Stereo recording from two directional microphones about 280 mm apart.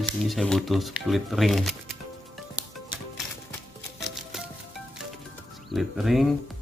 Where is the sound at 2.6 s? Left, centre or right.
Centre.